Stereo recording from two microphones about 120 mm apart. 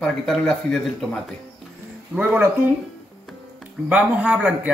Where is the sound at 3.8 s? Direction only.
10° right (ahead or behind).